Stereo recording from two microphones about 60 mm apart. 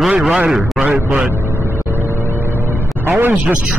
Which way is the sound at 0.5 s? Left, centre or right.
Centre.